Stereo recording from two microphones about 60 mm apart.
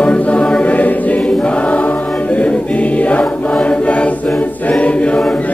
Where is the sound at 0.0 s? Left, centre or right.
Left.